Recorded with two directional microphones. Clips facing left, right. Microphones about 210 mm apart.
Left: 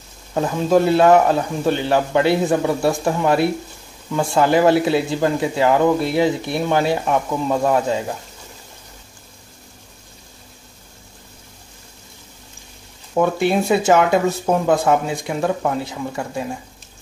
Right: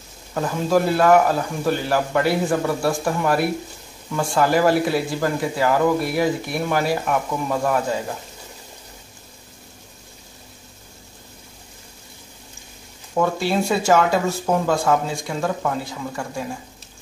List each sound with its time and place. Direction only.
0.3 s speech: 25° left (ahead or behind)
13.1 s speech: 20° left (ahead or behind)